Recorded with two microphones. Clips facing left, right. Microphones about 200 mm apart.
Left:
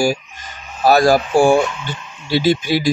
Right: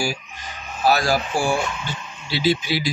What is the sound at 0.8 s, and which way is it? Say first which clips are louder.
Speech: left 7 dB; 50° left (ahead or behind).